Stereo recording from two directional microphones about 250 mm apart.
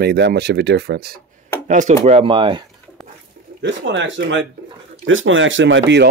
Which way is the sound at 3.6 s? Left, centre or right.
Right.